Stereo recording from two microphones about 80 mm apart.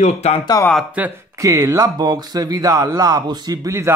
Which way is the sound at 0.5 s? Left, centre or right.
Left.